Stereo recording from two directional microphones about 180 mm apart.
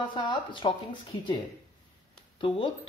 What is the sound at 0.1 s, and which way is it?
Speech, 25° left (ahead or behind).